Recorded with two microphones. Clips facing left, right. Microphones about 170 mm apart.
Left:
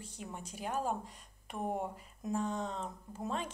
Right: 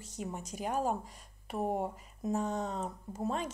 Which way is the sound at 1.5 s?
5° right (ahead or behind).